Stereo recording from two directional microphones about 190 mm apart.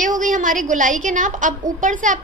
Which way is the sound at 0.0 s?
45° right (ahead or behind).